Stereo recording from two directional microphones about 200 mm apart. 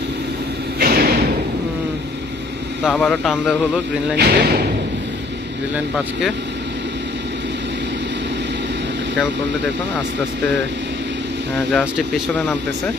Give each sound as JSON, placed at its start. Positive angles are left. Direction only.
{"t": 0.7, "sound": "a sound", "side_deg": -50}
{"t": 2.8, "sound": "speech", "side_deg": 0}
{"t": 4.2, "sound": "speech", "side_deg": -55}
{"t": 12.4, "sound": "speech", "side_deg": 5}